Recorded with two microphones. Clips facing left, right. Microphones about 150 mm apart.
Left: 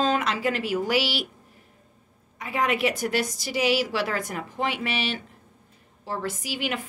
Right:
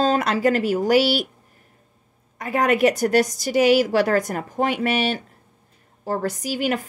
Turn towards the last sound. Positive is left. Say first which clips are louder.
# right 7 dB
turn(degrees=-45)  # may be behind; listen again after turning